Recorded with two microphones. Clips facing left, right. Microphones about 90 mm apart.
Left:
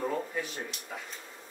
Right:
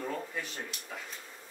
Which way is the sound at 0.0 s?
10° left (ahead or behind).